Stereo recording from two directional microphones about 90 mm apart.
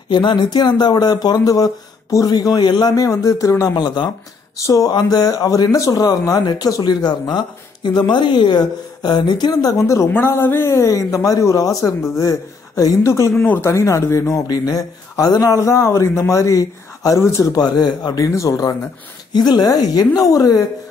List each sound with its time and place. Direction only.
0.1 s speech: 60° left (ahead or behind); by 3.7 s 40° left (ahead or behind)
3.7 s speech: 55° left (ahead or behind)
4.6 s speech: 45° left (ahead or behind)
9.8 s speech: 35° left (ahead or behind)
14.5 s speech: 45° left (ahead or behind)
15.5 s speech: 35° left (ahead or behind)
19.3 s speech: 50° left (ahead or behind)